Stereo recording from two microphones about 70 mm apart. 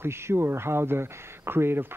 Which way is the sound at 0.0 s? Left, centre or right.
Right.